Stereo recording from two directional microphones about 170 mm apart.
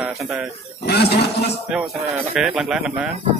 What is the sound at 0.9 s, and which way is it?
Speech, 70° left (ahead or behind).